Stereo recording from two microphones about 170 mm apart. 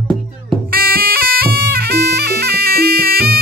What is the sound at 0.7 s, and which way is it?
Music, 60° right (ahead or behind).